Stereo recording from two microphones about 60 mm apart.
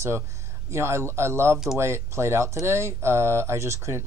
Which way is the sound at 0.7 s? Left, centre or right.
Right.